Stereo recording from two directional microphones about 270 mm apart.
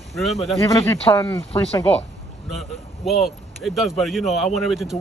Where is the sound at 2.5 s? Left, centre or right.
Centre.